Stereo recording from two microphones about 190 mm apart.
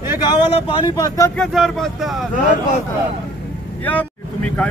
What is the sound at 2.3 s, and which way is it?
Speech, 45° left (ahead or behind).